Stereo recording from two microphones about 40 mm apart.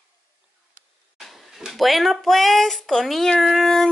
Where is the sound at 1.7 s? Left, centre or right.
Centre.